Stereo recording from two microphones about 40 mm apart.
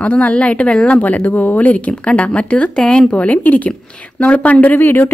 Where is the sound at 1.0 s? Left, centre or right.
Left.